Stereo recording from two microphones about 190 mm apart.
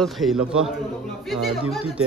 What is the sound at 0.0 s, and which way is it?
Speech, centre (ahead or behind).